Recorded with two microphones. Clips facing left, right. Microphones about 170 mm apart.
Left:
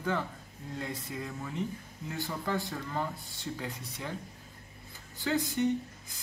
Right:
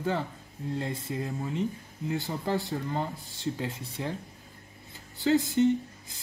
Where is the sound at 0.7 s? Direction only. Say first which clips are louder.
Right 4 dB; 25° right (ahead or behind).